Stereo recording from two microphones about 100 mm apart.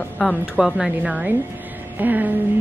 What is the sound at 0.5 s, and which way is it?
Speech, 10° right (ahead or behind).